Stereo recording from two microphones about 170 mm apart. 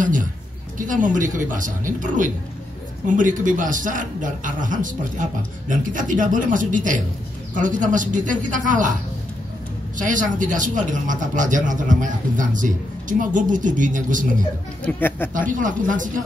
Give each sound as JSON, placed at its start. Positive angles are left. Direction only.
{"t": 0.0, "sound": "a sound", "side_deg": -50}
{"t": 0.7, "sound": "a man's voice", "side_deg": -50}
{"t": 9.9, "sound": "a man's voice", "side_deg": -50}
{"t": 14.9, "sound": "speech", "side_deg": 10}
{"t": 15.3, "sound": "a man's voice", "side_deg": -50}